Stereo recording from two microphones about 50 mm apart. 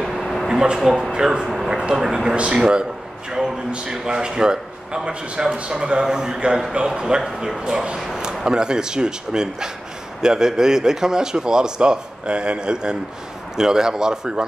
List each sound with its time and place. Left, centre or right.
0.0 s a sound: centre
0.5 s speech: centre
0.7 s speech: centre
1.1 s a man's voice: centre